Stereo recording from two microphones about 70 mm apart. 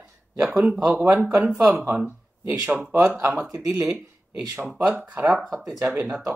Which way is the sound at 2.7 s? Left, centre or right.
Right.